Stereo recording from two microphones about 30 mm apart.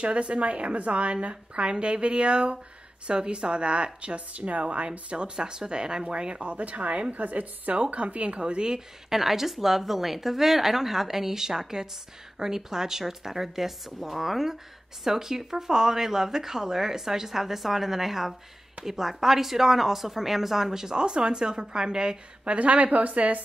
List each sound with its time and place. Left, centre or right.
0.0 s a woman's voice: right
5.1 s speech: right
6.4 s a woman's voice: right
7.7 s a woman's voice: right
8.4 s speech: right
9.1 s speech: centre
22.4 s a woman's voice: right